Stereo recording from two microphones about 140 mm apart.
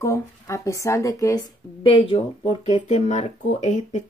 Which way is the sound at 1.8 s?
40° left (ahead or behind).